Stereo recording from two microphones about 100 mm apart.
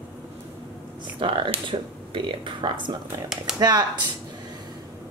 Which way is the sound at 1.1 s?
60° right (ahead or behind).